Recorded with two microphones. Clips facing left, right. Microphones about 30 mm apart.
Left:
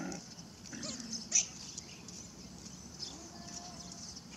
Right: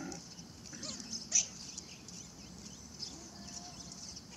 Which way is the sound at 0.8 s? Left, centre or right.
Centre.